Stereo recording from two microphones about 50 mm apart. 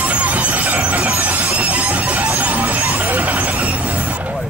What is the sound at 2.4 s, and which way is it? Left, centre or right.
Music, right.